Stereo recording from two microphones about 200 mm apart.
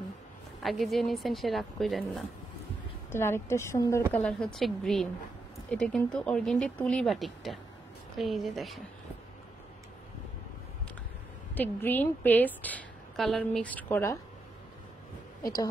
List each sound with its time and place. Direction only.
0.6 s speech: centre (ahead or behind)
3.1 s a woman's voice: 10° left (ahead or behind)
11.5 s a woman's voice: 10° left (ahead or behind)
15.4 s a woman's voice: 20° left (ahead or behind)